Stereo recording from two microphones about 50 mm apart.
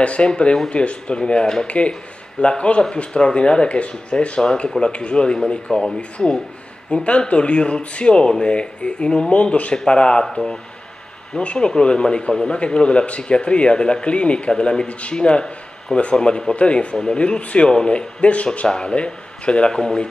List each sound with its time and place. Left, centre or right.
0.0 s speech: left
1.7 s speech: left
10.3 s speech: centre